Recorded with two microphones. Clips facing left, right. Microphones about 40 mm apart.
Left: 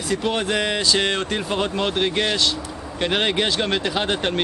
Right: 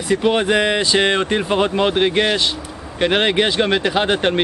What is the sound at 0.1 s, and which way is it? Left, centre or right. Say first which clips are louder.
Speech: right 6 dB; centre.